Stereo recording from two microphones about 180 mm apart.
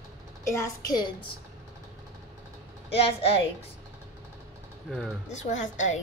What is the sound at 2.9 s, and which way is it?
Speech, 30° left (ahead or behind).